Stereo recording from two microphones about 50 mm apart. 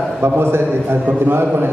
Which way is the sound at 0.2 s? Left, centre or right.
Right.